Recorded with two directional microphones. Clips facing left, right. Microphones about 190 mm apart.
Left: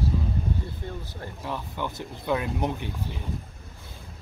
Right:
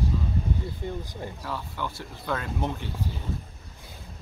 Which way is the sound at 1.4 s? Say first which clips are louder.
Left 4 dB; 20° left (ahead or behind).